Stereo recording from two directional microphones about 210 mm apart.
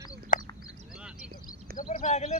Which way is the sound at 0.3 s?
40° left (ahead or behind).